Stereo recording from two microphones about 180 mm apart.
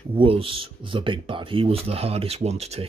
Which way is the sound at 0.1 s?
30° right (ahead or behind).